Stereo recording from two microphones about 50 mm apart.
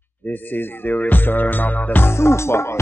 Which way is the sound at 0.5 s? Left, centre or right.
Left.